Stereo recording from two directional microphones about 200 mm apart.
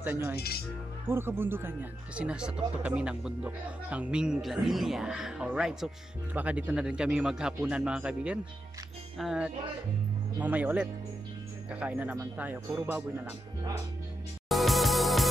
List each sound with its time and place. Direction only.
0.0 s speech: 10° right (ahead or behind)
0.4 s speech: 50° left (ahead or behind)
1.0 s speech: 10° right (ahead or behind)
14.5 s music: centre (ahead or behind)